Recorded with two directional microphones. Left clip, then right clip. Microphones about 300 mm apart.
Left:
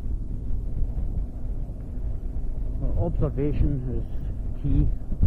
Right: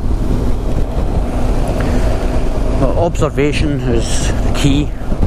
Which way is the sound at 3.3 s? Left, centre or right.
Centre.